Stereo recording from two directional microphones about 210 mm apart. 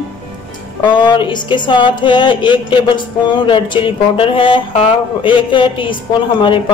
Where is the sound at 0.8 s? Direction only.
20° left (ahead or behind).